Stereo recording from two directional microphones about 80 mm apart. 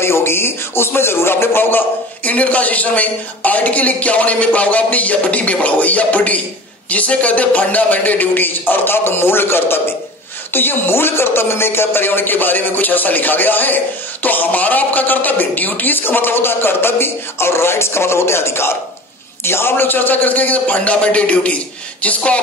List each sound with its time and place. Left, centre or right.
0.0 s speech: left